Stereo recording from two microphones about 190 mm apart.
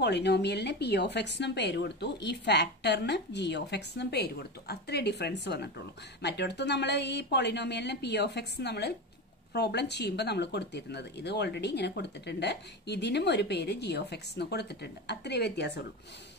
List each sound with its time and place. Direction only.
0.0 s speech: 60° left (ahead or behind)